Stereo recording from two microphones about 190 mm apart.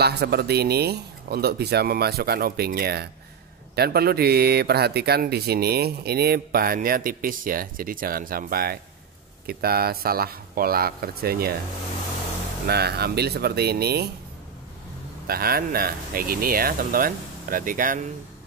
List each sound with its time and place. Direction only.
0.0 s speech: 60° right (ahead or behind)
12.6 s speech: 55° right (ahead or behind)
15.2 s speech: 50° right (ahead or behind)